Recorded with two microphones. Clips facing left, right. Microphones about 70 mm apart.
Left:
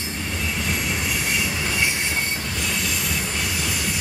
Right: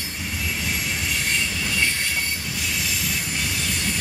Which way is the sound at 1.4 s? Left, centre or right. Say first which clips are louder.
Left 1 dB; left.